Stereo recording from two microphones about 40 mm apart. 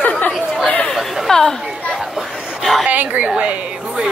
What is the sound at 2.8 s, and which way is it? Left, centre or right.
Speech, right.